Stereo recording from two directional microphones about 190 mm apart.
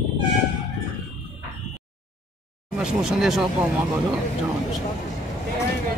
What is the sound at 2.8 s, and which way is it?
Speech, 5° right (ahead or behind).